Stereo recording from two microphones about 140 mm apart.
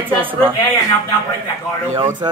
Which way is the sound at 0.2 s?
15° right (ahead or behind).